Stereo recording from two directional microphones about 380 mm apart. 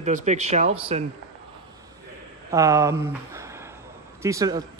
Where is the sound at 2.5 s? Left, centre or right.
Centre.